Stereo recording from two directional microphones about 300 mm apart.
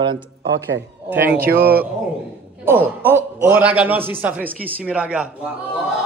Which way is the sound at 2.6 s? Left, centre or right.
Centre.